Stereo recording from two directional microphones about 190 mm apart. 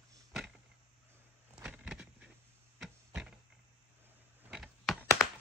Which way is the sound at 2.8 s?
5° right (ahead or behind).